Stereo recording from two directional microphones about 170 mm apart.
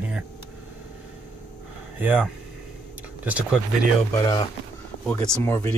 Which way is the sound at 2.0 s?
10° right (ahead or behind).